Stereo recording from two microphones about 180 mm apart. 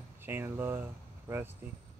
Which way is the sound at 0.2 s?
10° right (ahead or behind).